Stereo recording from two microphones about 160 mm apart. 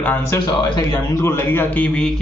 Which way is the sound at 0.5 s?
30° left (ahead or behind).